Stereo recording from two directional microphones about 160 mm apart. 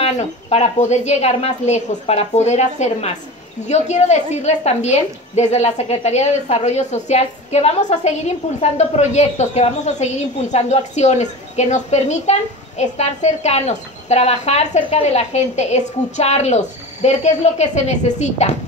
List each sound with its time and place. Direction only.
0.0 s a woman's voice: 40° left (ahead or behind)